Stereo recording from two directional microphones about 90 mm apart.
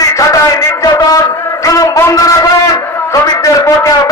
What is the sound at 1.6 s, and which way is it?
Speech, 35° left (ahead or behind).